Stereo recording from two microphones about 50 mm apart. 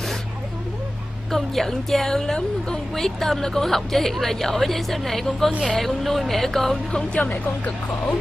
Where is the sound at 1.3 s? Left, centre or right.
Centre.